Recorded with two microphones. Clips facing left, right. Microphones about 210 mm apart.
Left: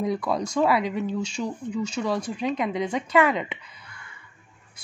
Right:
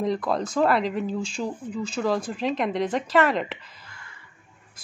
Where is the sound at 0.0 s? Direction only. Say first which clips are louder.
Right 1 dB; centre (ahead or behind).